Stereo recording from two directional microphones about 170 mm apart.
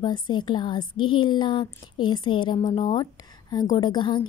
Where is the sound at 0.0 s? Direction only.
25° left (ahead or behind).